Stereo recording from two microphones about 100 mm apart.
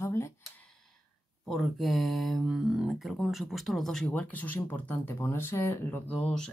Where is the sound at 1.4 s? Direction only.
Centre (ahead or behind).